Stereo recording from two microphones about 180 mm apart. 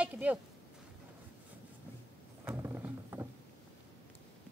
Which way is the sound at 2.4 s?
15° right (ahead or behind).